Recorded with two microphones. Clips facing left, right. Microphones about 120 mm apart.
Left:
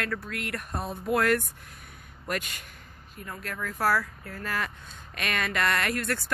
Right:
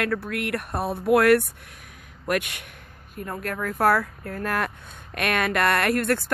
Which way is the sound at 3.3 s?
50° right (ahead or behind).